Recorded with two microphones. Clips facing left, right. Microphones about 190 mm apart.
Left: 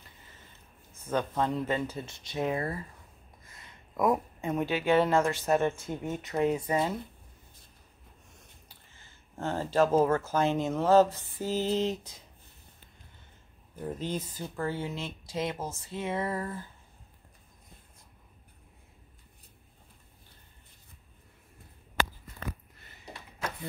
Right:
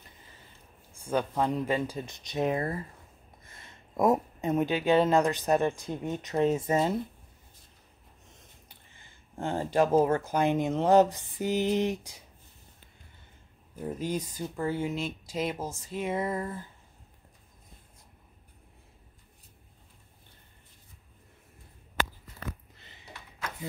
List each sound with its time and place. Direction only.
0.9 s speech: 10° right (ahead or behind)
9.3 s speech: 15° right (ahead or behind)
13.7 s speech: 10° right (ahead or behind)